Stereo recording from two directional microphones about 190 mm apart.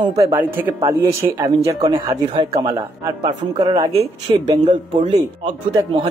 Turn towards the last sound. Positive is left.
turn(degrees=-25)  # may be behind; listen again after turning